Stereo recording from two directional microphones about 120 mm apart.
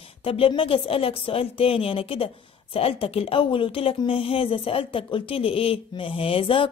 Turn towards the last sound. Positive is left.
turn(degrees=50)  # may be behind; listen again after turning